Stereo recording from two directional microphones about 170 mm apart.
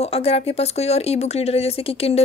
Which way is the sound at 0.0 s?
35° left (ahead or behind).